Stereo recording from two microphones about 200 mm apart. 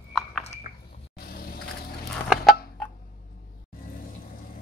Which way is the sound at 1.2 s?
50° left (ahead or behind).